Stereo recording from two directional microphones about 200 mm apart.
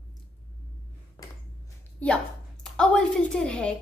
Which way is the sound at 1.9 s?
5° left (ahead or behind).